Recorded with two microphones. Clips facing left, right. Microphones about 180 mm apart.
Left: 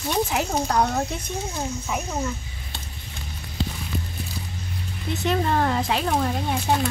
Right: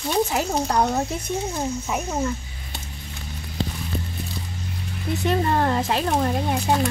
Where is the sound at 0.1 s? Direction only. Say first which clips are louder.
Right 2 dB; 5° right (ahead or behind).